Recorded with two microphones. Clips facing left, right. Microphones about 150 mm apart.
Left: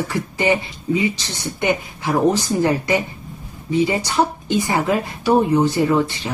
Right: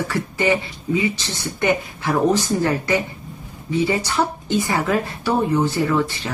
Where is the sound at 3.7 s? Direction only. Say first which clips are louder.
Left 2 dB; 15° left (ahead or behind).